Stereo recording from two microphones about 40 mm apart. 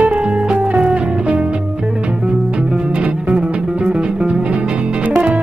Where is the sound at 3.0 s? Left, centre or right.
Right.